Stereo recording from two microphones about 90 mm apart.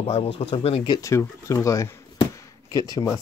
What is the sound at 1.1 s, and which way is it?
Speech, 35° left (ahead or behind).